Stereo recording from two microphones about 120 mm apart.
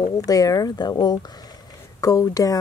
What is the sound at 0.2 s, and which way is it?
Speech, 30° left (ahead or behind).